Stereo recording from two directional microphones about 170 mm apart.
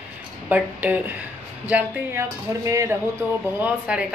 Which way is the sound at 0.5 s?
10° right (ahead or behind).